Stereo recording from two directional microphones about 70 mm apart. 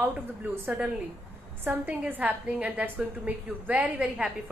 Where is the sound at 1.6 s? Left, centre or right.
Right.